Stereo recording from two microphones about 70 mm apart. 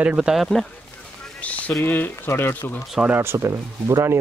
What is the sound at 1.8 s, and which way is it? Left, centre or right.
Speech, left.